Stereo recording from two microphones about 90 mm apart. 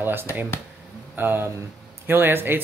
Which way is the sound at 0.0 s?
25° right (ahead or behind).